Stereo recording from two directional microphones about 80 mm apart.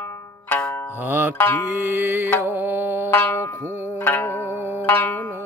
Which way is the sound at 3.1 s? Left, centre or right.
Left.